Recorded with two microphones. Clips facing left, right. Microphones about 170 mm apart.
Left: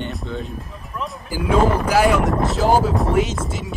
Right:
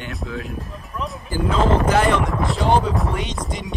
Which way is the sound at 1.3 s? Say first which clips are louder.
Left 1 dB; 10° left (ahead or behind).